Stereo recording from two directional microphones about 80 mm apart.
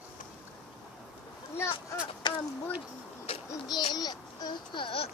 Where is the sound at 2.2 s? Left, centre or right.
Left.